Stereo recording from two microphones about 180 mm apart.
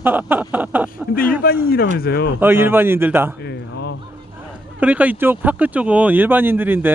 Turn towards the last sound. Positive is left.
turn(degrees=-10)  # may be behind; listen again after turning